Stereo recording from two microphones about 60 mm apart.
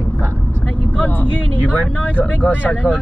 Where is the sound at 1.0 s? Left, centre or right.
Left.